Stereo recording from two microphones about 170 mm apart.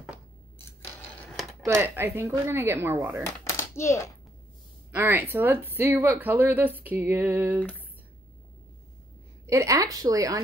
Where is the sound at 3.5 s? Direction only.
15° left (ahead or behind).